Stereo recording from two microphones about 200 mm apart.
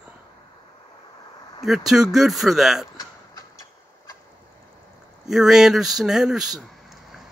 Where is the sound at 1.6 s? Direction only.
Centre (ahead or behind).